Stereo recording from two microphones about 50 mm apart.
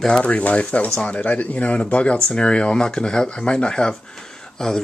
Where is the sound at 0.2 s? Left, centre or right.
Left.